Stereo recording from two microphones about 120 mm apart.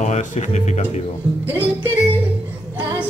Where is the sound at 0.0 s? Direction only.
85° left; by 1.0 s 70° left (ahead or behind).